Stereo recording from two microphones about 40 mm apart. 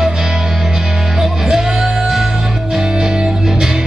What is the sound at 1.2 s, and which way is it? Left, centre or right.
Music, centre.